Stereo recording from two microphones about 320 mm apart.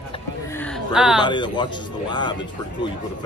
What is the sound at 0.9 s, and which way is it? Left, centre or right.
Speech, centre.